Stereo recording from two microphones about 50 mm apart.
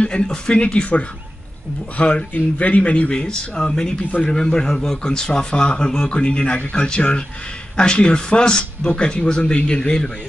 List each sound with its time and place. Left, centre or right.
0.0 s speech: left